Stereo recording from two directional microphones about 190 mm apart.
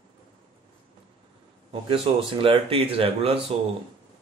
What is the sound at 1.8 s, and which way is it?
Speech, 30° right (ahead or behind).